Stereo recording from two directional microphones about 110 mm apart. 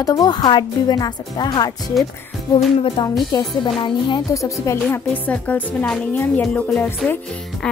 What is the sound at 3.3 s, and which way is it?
Speech, 40° left (ahead or behind).